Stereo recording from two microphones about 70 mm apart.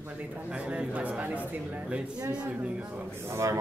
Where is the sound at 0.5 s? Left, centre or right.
Centre.